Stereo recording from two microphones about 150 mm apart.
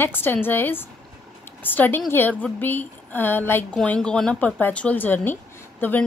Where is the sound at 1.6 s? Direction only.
10° left (ahead or behind).